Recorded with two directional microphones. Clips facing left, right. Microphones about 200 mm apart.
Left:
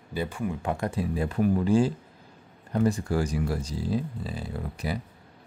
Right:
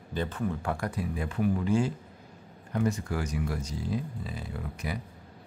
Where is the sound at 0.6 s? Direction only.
20° left (ahead or behind).